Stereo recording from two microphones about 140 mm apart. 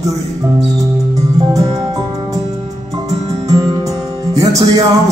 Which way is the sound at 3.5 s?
25° right (ahead or behind).